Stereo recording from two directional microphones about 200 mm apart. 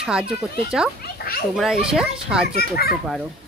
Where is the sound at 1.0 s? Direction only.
50° left (ahead or behind).